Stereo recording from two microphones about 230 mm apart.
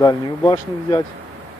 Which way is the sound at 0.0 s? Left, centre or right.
Centre.